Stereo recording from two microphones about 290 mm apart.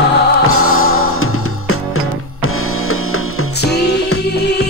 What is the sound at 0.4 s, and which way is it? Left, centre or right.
Music, left.